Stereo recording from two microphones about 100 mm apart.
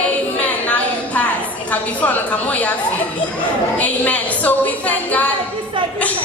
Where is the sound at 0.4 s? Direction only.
15° left (ahead or behind).